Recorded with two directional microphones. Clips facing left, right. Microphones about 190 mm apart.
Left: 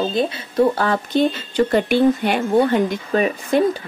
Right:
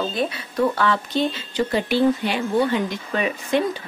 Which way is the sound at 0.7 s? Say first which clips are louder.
Left 2 dB; 35° left (ahead or behind).